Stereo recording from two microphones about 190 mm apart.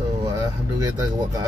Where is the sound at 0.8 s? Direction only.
20° right (ahead or behind).